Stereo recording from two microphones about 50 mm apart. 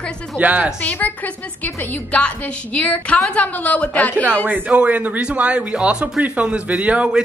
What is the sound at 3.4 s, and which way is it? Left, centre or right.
Speech, left.